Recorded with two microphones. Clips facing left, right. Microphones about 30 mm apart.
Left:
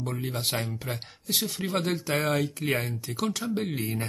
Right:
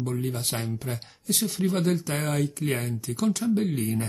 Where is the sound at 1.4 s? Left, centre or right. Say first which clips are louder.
Right 5 dB; centre; by 3.1 s left.